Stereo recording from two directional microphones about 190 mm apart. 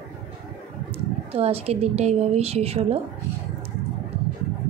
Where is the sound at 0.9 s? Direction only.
30° right (ahead or behind).